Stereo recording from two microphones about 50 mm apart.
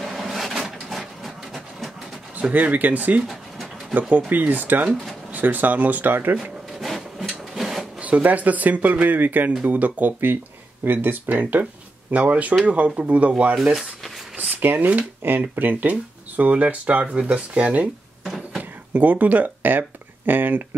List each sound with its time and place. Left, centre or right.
0.0 s a sound: centre
2.5 s speech: right
4.3 s speech: right
6.8 s wood: centre
7.5 s drawer open or close: centre
8.0 s speech: right
14.6 s speech: right
18.2 s a sound: centre
18.6 s speech: right